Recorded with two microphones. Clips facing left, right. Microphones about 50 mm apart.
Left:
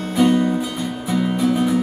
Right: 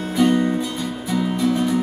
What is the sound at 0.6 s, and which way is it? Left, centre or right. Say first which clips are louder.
Music: left 1 dB; centre.